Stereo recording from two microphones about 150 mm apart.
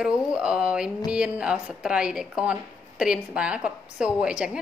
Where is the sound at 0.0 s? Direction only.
5° right (ahead or behind).